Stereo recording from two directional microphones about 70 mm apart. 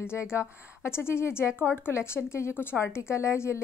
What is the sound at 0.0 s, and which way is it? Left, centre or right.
A woman's voice, left.